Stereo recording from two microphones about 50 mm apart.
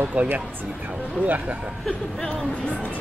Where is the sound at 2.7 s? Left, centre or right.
Left.